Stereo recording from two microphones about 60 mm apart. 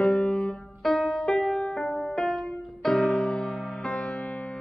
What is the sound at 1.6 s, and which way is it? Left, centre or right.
Music, centre.